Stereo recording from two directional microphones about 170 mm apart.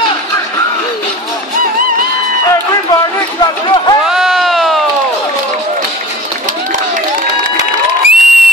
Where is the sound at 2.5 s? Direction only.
20° left (ahead or behind).